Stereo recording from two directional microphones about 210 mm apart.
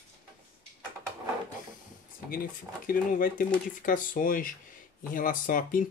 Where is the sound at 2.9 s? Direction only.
40° left (ahead or behind).